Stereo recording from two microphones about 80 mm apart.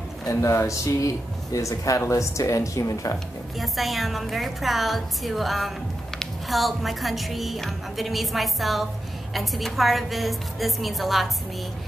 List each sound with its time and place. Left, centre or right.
0.2 s speech: left
3.5 s a woman's voice: centre